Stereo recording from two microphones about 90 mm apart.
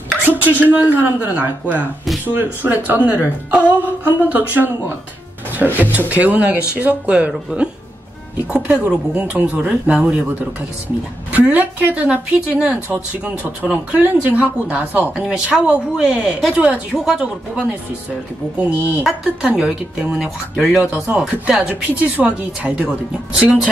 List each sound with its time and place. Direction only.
0.2 s a woman's voice: 20° right (ahead or behind)
11.3 s speech: 20° right (ahead or behind)